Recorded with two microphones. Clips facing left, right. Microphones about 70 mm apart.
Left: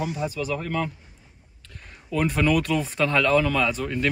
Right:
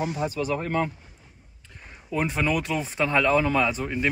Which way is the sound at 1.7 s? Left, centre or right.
Centre.